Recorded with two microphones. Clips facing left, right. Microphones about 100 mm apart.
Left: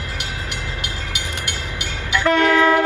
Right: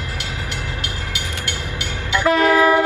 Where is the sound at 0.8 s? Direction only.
20° left (ahead or behind).